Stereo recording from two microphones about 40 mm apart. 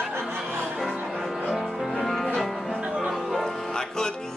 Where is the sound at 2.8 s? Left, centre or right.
Right.